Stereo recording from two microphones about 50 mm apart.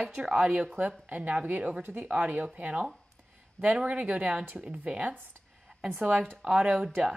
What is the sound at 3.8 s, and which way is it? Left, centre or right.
Speech, right.